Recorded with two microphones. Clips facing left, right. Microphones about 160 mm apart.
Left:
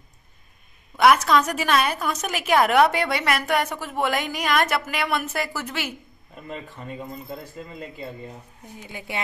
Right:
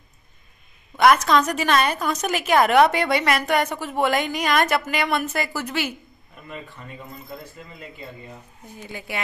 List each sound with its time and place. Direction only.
0.9 s a woman's voice: 5° left (ahead or behind)
6.4 s speech: 25° left (ahead or behind)
8.9 s speech: 25° left (ahead or behind)